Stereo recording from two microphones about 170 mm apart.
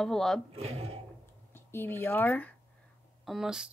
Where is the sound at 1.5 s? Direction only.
15° left (ahead or behind).